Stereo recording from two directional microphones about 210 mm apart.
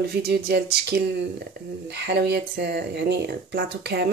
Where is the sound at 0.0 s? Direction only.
50° right (ahead or behind).